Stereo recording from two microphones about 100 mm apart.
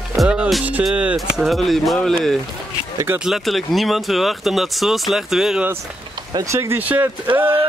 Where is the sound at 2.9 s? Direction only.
20° right (ahead or behind).